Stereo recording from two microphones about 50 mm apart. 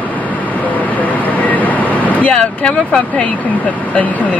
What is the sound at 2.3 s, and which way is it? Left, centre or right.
Speech, left.